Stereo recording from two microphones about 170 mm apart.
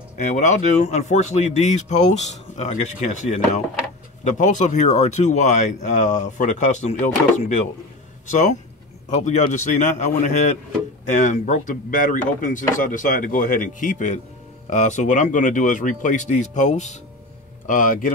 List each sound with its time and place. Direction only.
0.2 s speech: 45° left (ahead or behind)